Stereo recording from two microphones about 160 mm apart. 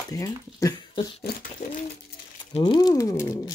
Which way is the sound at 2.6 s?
25° left (ahead or behind).